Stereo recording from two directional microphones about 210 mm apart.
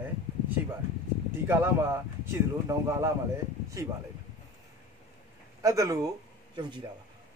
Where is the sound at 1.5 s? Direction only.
10° right (ahead or behind).